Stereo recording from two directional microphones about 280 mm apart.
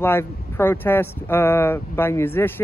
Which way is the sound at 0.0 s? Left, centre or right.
Centre.